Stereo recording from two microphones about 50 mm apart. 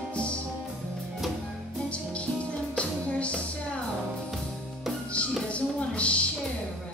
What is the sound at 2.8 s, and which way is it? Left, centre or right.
Music, left.